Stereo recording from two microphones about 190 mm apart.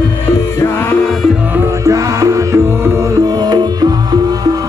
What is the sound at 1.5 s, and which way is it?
Music, 15° right (ahead or behind).